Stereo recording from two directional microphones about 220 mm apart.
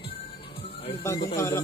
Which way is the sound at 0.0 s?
25° left (ahead or behind).